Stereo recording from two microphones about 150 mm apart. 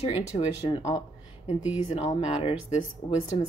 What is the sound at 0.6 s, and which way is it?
Speech, 25° left (ahead or behind).